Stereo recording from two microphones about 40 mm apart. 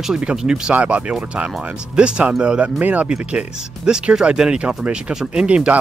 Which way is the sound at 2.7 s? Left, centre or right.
Right.